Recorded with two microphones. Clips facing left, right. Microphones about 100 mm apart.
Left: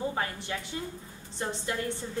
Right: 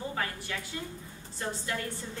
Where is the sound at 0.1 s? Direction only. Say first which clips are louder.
Left 2 dB; 25° left (ahead or behind).